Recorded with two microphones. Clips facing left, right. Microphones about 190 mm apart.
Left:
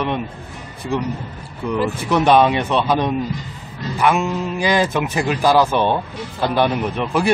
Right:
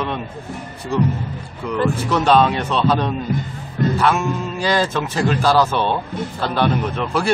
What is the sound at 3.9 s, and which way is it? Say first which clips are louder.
A man's voice: left 5 dB; 15° left (ahead or behind).